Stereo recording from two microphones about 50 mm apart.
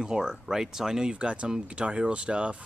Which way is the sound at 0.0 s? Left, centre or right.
Centre.